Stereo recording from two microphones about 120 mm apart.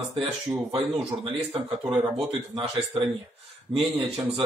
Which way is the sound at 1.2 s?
45° right (ahead or behind).